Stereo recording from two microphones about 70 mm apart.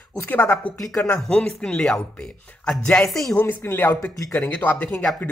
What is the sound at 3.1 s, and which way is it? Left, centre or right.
Music, centre.